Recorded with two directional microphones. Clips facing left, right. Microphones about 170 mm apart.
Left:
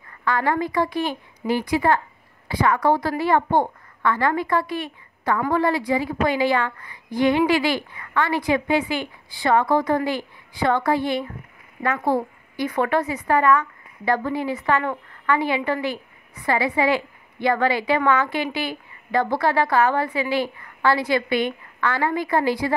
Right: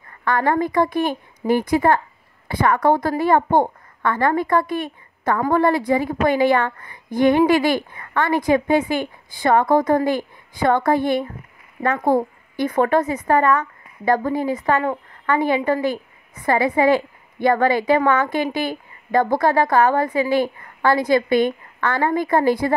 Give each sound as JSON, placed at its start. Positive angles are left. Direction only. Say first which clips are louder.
{"t": 0.2, "sound": "a woman's voice", "louder": "right 3 dB", "side_deg": -50}